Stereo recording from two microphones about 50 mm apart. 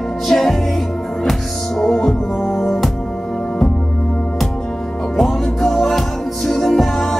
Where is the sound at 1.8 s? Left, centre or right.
Centre.